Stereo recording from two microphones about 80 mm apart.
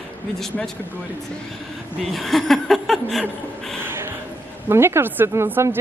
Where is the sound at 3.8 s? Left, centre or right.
Right.